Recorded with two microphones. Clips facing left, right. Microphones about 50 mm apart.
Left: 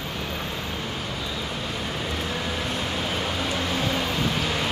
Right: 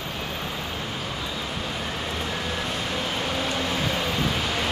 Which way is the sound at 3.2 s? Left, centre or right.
Centre.